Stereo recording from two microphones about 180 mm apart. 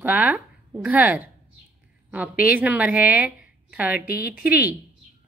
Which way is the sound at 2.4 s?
5° right (ahead or behind).